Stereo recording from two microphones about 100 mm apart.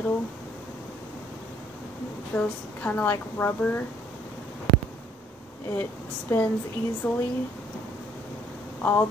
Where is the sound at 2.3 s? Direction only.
15° left (ahead or behind).